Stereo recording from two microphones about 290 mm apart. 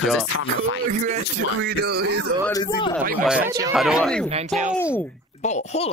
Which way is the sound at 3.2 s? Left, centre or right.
Centre.